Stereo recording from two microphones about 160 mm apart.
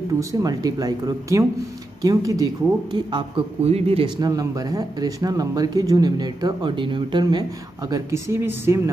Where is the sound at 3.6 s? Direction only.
40° right (ahead or behind).